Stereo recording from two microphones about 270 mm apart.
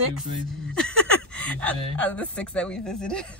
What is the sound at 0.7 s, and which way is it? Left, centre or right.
Speech, centre.